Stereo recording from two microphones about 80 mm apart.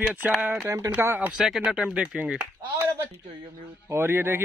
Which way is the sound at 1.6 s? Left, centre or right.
Centre.